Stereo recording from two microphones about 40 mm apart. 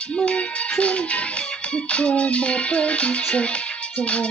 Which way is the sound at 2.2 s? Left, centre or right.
Left.